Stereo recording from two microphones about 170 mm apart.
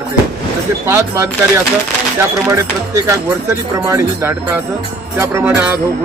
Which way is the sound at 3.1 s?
15° right (ahead or behind).